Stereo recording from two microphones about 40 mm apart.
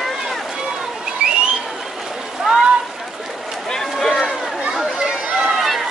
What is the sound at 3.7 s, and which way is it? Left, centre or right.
Run, centre.